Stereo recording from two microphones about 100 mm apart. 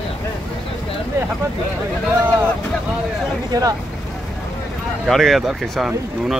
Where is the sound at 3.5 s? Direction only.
35° right (ahead or behind).